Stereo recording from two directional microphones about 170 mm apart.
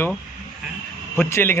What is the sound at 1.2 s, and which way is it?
Speech, 10° left (ahead or behind).